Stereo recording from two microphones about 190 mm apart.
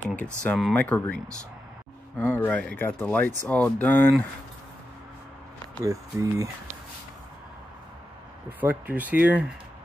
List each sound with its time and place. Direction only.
0.4 s speech: 5° left (ahead or behind)
2.1 s speech: 5° left (ahead or behind)
5.8 s speech: 15° right (ahead or behind)
8.5 s speech: 10° right (ahead or behind)